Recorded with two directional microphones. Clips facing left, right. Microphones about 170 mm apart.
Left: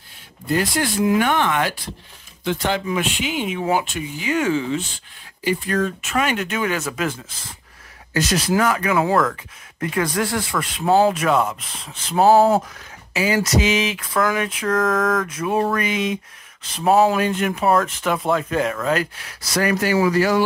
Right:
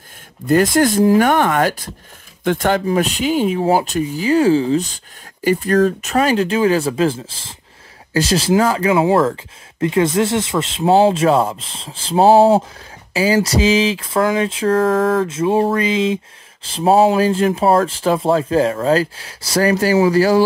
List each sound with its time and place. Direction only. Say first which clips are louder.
0.5 s speech: right 8 dB; 45° right (ahead or behind)